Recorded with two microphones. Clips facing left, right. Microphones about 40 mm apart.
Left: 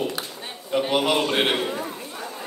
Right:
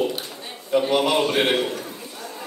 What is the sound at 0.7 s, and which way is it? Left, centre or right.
Speech, centre.